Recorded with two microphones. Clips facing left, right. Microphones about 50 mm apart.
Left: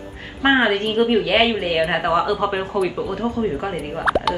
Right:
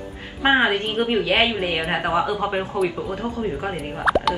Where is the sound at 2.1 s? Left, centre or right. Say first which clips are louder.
Left 1 dB; right.